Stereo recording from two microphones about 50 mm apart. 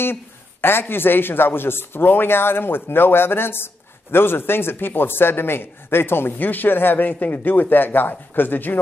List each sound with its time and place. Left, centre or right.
0.0 s speech: left